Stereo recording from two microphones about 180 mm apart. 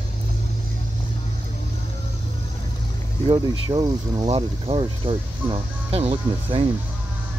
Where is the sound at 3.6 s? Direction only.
25° right (ahead or behind).